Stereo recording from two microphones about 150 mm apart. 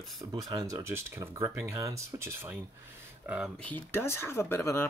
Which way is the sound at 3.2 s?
5° right (ahead or behind).